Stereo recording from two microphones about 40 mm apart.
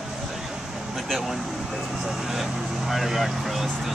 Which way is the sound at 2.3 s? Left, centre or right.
Centre.